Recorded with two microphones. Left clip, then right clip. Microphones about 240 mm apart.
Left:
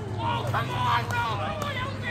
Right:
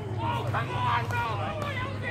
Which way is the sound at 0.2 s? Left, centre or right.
Left.